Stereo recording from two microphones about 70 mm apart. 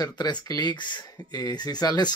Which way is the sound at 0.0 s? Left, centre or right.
Left.